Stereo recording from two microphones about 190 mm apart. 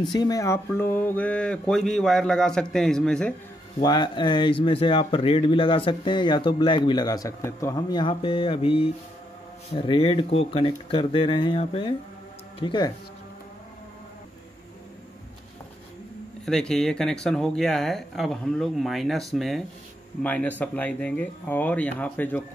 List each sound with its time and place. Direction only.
0.1 s speech: 20° left (ahead or behind); by 3.3 s 5° left (ahead or behind)
3.8 s speech: 25° left (ahead or behind)
16.4 s speech: centre (ahead or behind)